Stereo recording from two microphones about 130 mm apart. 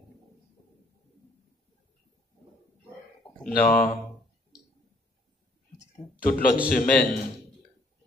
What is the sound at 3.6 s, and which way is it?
Speech, 10° left (ahead or behind).